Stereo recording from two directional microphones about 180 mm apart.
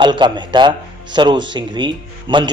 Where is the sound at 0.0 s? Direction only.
25° right (ahead or behind).